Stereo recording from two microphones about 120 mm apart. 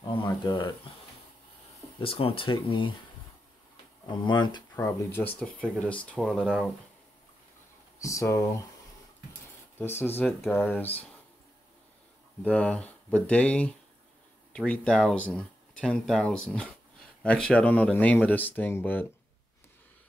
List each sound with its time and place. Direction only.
0.2 s speech: 40° left (ahead or behind)
2.0 s speech: 50° left (ahead or behind)
4.1 s speech: 40° left (ahead or behind)
5.2 s speech: 10° left (ahead or behind)
8.0 s speech: 25° left (ahead or behind)
9.8 s speech: 20° left (ahead or behind)
12.4 s speech: 10° left (ahead or behind)